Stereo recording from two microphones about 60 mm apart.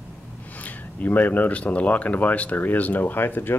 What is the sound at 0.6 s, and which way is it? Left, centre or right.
Speech, left.